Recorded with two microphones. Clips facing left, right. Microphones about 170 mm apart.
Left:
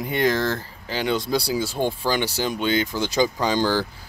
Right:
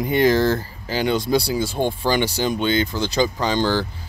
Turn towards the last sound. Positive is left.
turn(degrees=5)  # may be behind; listen again after turning